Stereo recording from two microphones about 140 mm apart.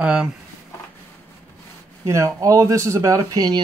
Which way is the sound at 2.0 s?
25° right (ahead or behind).